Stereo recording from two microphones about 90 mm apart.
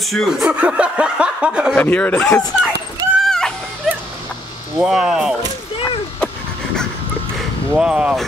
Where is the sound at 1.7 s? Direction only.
15° left (ahead or behind).